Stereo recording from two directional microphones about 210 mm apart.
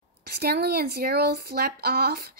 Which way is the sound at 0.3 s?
50° right (ahead or behind).